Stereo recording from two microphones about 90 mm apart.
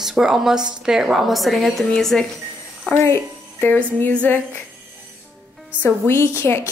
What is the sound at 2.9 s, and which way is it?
A woman's voice, 30° left (ahead or behind).